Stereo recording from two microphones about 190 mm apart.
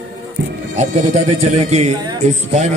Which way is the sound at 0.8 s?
40° right (ahead or behind).